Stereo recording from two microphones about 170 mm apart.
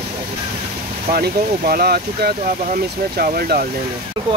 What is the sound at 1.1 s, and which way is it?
Speech, 65° right (ahead or behind).